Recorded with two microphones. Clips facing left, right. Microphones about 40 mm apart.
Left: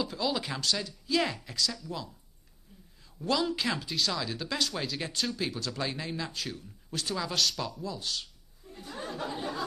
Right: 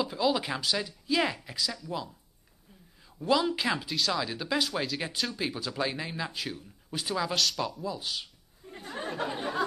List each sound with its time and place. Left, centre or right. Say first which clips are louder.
0.0 s speech: right 4 dB; centre
3.2 s speech: right 3 dB; centre
7.3 s speech: right 1 dB; centre
8.7 s a sound: right 3 dB; right